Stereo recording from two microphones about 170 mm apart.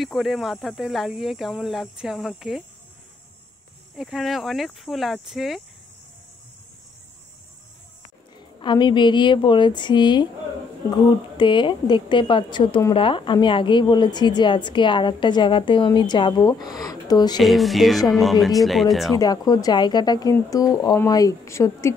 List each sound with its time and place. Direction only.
0.0 s speech: centre (ahead or behind)
3.9 s speech: centre (ahead or behind)
8.5 s a woman's voice: 25° left (ahead or behind)
17.4 s speech: centre (ahead or behind)
19.1 s a woman's voice: 20° left (ahead or behind)